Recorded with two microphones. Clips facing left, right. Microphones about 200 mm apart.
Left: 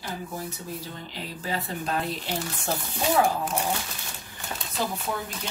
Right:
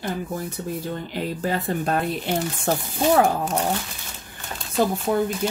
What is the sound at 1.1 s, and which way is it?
Speech, 55° right (ahead or behind).